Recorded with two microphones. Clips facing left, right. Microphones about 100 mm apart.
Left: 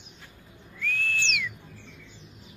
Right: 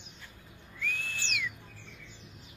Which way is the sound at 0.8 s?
15° right (ahead or behind).